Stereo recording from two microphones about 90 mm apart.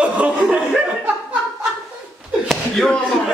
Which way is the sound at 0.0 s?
15° right (ahead or behind).